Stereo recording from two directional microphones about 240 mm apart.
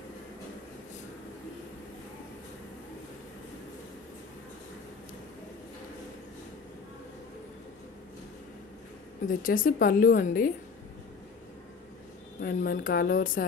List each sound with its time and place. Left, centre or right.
9.3 s a woman's voice: left
12.4 s a woman's voice: left